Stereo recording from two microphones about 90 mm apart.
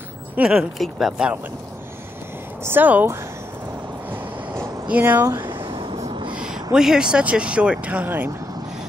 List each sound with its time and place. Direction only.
0.4 s speech: 5° right (ahead or behind)
2.6 s speech: 20° right (ahead or behind)
4.8 s speech: 20° right (ahead or behind)
5.2 s speech: 30° right (ahead or behind)
5.5 s train: 60° right (ahead or behind)
6.3 s speech: 10° right (ahead or behind)